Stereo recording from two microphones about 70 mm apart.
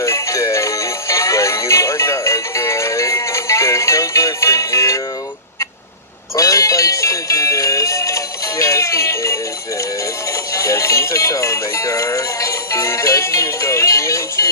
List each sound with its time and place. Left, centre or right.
0.0 s music: left
6.3 s music: left
10.5 s music: left